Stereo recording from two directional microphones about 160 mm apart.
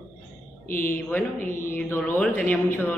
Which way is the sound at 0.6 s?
60° left (ahead or behind).